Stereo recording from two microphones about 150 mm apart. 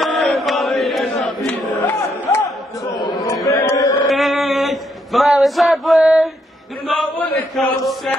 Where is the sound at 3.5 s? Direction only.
20° left (ahead or behind).